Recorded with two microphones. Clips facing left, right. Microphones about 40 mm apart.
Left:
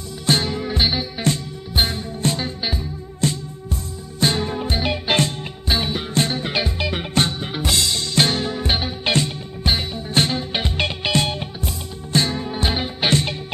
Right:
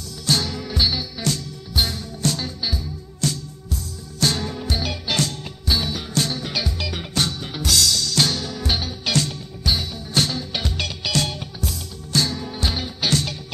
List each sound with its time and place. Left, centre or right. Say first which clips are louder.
0.3 s music: left 3 dB; left